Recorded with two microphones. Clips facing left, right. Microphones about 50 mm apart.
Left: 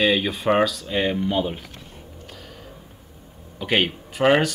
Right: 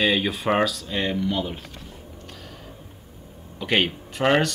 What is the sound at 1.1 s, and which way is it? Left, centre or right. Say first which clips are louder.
Speech: left 2 dB; left.